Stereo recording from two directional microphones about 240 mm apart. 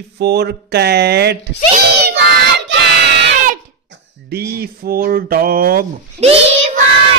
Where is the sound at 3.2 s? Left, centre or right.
Right.